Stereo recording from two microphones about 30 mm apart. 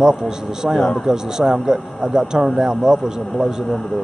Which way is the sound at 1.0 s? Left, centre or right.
Right.